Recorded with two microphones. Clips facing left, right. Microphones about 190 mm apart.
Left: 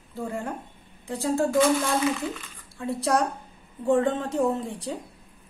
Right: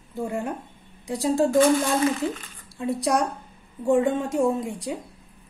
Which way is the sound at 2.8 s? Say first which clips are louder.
Right 1 dB; 15° right (ahead or behind).